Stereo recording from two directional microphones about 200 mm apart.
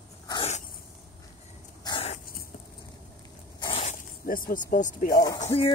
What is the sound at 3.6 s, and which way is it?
Zipper, 30° left (ahead or behind).